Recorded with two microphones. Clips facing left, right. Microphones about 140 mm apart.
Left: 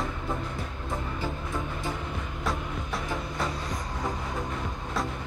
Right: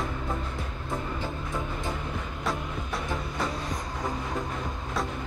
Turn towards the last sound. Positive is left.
turn(degrees=0)  # may be behind; listen again after turning